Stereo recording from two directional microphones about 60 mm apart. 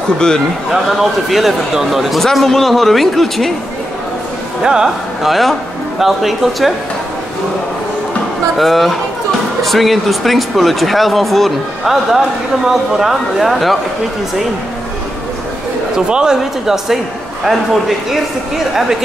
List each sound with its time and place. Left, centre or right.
0.7 s speech: centre
4.6 s a man's voice: centre
8.5 s speech: centre
16.1 s speech: centre